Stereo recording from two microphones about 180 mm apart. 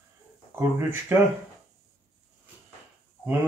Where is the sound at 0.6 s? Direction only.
15° right (ahead or behind).